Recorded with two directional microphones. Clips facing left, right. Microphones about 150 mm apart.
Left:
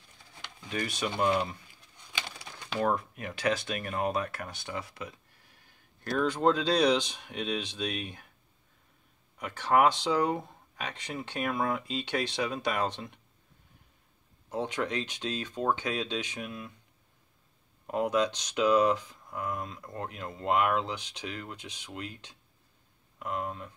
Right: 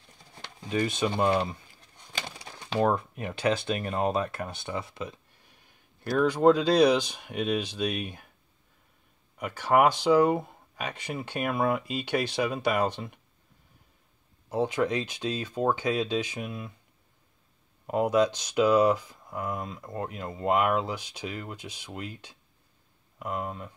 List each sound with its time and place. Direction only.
0.7 s speech: 25° right (ahead or behind)
6.0 s speech: 10° right (ahead or behind)
9.4 s speech: 10° right (ahead or behind)
14.5 s speech: 10° right (ahead or behind)
17.8 s speech: 10° right (ahead or behind)